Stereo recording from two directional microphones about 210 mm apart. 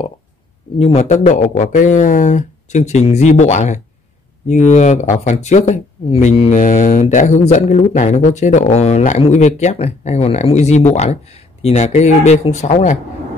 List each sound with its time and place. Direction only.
0.7 s speech: 30° left (ahead or behind)